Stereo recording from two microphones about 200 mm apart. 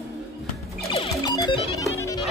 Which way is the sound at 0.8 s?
30° left (ahead or behind).